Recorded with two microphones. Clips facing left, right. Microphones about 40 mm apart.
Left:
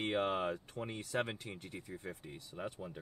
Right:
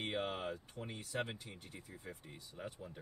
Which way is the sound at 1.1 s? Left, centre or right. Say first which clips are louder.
Left 4 dB; left.